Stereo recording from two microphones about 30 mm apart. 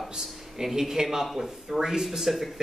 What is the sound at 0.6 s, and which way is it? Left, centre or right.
Speech, centre.